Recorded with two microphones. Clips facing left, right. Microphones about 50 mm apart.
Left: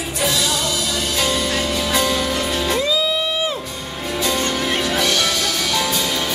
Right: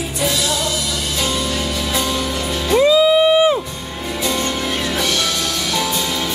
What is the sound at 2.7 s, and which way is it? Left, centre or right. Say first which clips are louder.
Music: right 12 dB; centre.